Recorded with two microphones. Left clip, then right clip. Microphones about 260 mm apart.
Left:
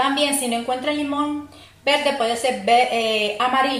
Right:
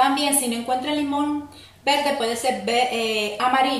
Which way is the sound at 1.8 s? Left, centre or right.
Centre.